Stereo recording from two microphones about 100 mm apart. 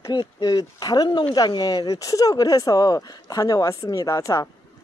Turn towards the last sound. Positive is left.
turn(degrees=30)  # may be behind; listen again after turning